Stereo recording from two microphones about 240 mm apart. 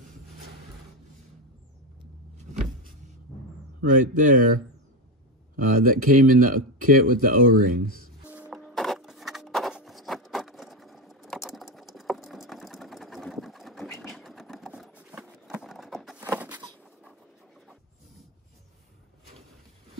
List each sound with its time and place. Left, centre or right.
3.8 s speech: right
5.6 s speech: right
8.3 s music: centre
14.0 s a sound: centre